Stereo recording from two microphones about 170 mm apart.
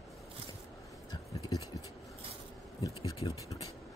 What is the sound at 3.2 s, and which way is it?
Speech, 20° left (ahead or behind).